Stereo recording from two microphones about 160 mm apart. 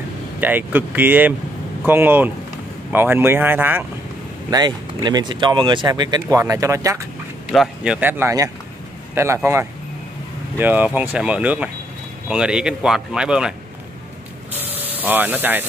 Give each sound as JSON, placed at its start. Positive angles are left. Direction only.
{"t": 0.4, "sound": "speech", "side_deg": -10}
{"t": 4.5, "sound": "speech", "side_deg": -25}
{"t": 7.5, "sound": "speech", "side_deg": -5}
{"t": 14.6, "sound": "a sound", "side_deg": -10}